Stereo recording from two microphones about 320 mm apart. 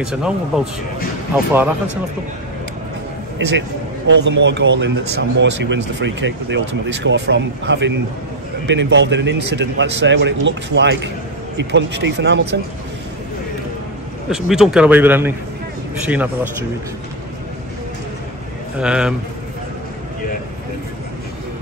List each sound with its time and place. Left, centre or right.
0.0 s speech: centre
3.3 s speech: right
14.3 s speech: centre
18.8 s speech: centre